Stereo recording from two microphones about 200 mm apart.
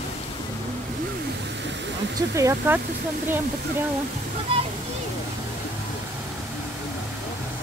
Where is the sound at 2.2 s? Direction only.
15° right (ahead or behind).